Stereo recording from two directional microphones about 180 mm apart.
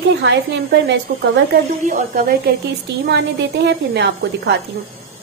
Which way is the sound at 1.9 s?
45° right (ahead or behind).